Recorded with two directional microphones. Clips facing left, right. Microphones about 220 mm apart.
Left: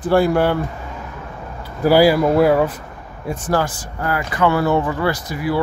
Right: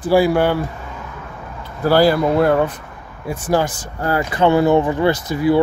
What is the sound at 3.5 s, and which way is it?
Speech, 20° right (ahead or behind).